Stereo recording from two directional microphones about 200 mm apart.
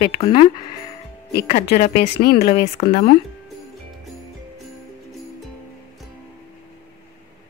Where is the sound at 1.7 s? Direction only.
50° left (ahead or behind).